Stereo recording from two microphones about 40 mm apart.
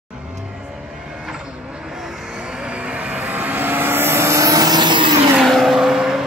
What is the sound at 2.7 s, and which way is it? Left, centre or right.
Vehicle, right.